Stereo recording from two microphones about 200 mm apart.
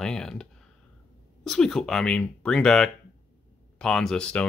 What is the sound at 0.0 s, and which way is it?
Clicking, 5° left (ahead or behind).